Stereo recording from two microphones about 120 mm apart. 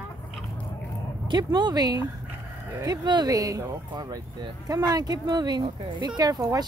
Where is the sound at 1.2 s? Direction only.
40° right (ahead or behind).